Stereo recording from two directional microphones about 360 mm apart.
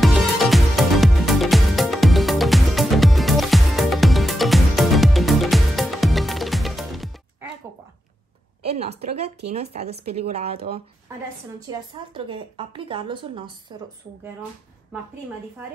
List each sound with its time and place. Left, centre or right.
0.0 s music: centre
8.6 s a sound: centre
9.5 s a woman's voice: centre